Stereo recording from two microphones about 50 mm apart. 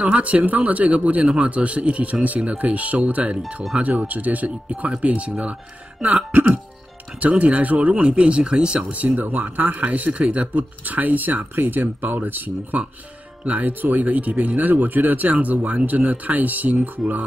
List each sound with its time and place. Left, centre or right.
0.0 s speech: right
4.1 s speech: right
7.2 s speech: right
9.0 s speech: right